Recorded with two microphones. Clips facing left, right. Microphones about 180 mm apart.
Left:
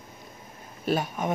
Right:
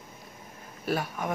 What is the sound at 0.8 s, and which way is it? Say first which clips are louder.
Speech: left 3 dB; 20° left (ahead or behind).